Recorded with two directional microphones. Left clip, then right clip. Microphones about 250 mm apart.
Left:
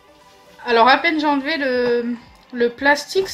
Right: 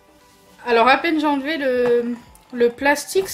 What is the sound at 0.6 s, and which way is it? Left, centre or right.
Speech, centre.